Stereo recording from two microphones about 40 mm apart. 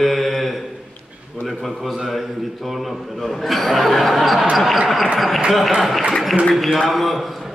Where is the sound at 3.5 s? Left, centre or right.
Centre.